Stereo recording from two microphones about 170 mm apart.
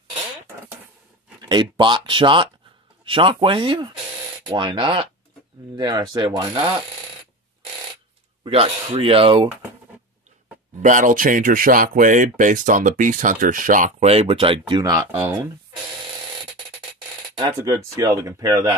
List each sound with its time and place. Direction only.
1.5 s speech: 25° right (ahead or behind)
8.5 s speech: 35° right (ahead or behind)
10.8 s speech: 50° right (ahead or behind); by 14.6 s 30° right (ahead or behind)
14.7 s speech: 20° right (ahead or behind)
17.4 s speech: 20° right (ahead or behind)